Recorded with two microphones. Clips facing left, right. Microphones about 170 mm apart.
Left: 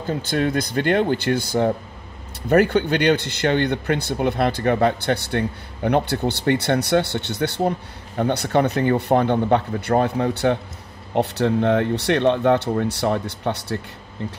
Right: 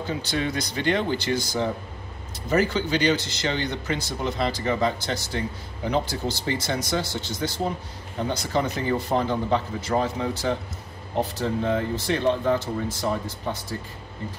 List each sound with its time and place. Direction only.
0.0 s speech: 50° left (ahead or behind); by 14.3 s 70° left (ahead or behind)